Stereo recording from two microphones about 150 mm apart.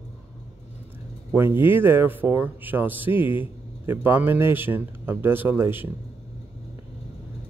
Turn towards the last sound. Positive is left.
turn(degrees=-15)  # may be behind; listen again after turning